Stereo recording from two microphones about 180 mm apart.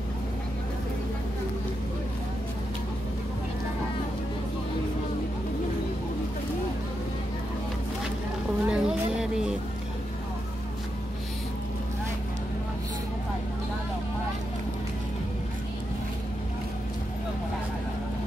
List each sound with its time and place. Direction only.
8.6 s music: 5° right (ahead or behind)